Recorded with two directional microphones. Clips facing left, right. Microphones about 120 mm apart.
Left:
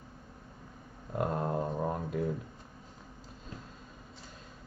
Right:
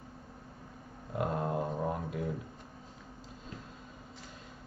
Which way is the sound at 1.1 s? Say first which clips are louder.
Left 1 dB; 40° left (ahead or behind).